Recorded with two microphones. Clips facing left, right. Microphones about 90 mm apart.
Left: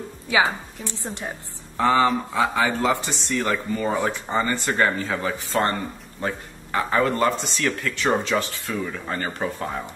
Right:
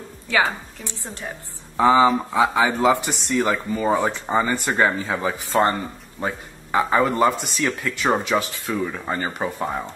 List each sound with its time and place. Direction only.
0.3 s a woman's voice: 15° left (ahead or behind)
1.8 s speech: 15° right (ahead or behind)